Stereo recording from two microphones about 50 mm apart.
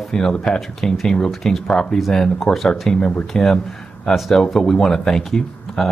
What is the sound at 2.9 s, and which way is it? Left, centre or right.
Speech, left.